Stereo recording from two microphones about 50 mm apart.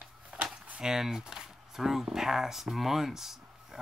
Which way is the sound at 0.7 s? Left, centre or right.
Centre.